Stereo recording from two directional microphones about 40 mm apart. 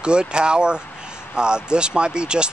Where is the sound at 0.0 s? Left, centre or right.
Right.